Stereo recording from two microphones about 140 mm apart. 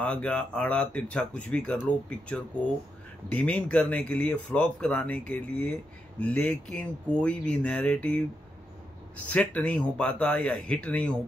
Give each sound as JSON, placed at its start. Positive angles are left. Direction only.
{"t": 0.0, "sound": "speech", "side_deg": 10}